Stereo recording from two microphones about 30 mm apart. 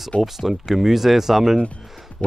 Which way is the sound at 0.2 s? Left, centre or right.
Centre.